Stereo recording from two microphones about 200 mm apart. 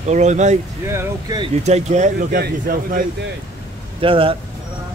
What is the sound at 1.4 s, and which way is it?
Speech, 35° right (ahead or behind).